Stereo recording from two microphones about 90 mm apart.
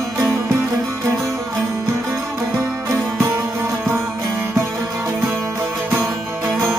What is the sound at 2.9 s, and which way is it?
Music, 30° right (ahead or behind).